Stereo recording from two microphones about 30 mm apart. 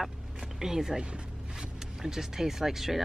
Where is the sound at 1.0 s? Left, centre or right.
Right.